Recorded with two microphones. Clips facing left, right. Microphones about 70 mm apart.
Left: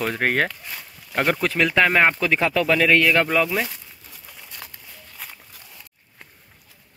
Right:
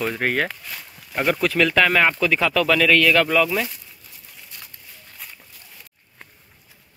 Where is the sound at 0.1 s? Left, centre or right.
Left.